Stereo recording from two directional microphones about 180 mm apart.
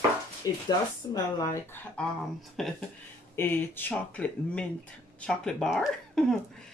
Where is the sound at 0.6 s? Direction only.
20° left (ahead or behind).